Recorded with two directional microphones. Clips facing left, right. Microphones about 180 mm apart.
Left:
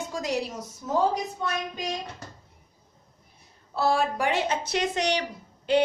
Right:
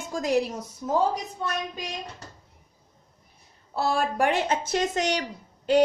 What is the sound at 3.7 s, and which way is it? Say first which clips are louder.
Speech: left 1 dB; 50° right (ahead or behind).